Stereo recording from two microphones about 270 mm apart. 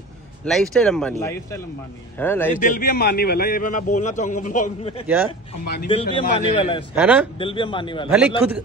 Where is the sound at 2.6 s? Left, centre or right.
Left.